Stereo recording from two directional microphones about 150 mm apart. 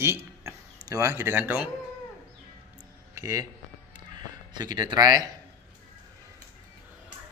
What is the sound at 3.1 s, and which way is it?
A man's voice, 20° right (ahead or behind).